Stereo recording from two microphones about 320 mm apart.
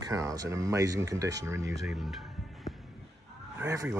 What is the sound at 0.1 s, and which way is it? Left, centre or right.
Speech, centre.